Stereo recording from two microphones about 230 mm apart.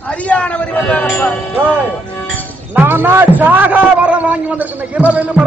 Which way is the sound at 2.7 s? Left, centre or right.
Centre.